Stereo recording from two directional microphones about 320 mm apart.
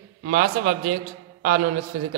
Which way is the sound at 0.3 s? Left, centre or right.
Right.